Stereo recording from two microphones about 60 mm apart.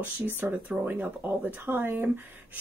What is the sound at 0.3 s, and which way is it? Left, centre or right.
Speech, right.